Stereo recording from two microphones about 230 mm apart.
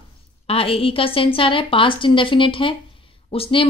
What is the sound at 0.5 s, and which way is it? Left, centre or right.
Speech, left.